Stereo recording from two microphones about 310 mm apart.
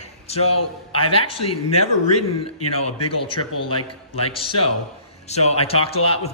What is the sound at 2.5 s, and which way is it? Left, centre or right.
Speech, left.